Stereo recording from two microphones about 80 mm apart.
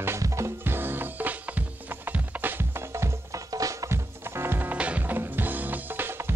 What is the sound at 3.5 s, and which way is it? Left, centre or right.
Music, right.